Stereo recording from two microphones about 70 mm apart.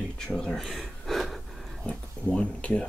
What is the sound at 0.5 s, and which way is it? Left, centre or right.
Sniff, centre.